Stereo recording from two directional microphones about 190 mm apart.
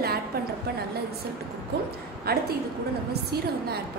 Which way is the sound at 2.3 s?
55° right (ahead or behind).